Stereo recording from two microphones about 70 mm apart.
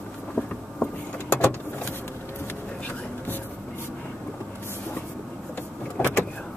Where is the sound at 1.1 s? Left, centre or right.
Left.